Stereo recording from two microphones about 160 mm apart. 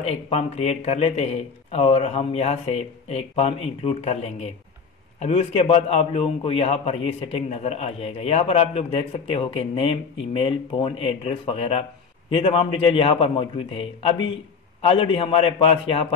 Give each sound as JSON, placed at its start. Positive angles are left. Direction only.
{"t": 0.0, "sound": "a man's voice", "side_deg": 40}